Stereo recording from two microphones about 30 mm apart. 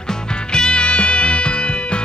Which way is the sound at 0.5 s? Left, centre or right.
Left.